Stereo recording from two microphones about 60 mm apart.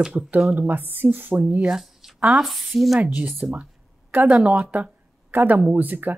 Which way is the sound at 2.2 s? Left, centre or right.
Centre.